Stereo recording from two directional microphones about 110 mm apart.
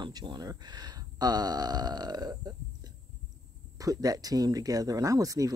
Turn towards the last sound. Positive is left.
turn(degrees=-30)  # may be behind; listen again after turning